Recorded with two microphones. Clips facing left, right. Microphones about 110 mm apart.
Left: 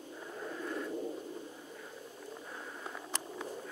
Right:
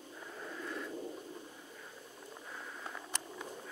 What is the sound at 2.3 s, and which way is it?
Bird, 10° left (ahead or behind).